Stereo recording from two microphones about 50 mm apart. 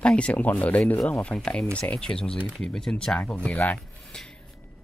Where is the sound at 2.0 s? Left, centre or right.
Centre.